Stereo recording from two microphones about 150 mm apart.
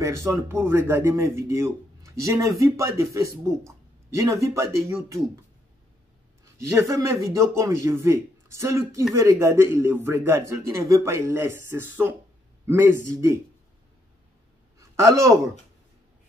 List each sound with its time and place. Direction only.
0.0 s a man's voice: 20° right (ahead or behind)
6.6 s a man's voice: 20° right (ahead or behind)
14.8 s a man's voice: 20° right (ahead or behind)